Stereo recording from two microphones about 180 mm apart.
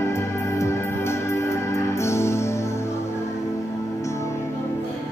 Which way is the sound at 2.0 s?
15° left (ahead or behind).